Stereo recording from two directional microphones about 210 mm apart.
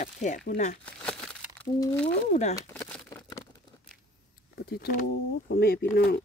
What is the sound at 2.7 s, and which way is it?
Crumpling, 10° left (ahead or behind).